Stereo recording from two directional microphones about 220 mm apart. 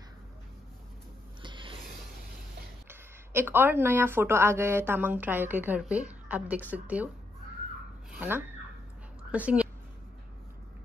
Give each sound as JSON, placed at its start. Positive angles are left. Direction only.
{"t": 1.4, "sound": "a sound", "side_deg": -20}
{"t": 2.9, "sound": "speech", "side_deg": -10}
{"t": 8.1, "sound": "a woman's voice", "side_deg": -10}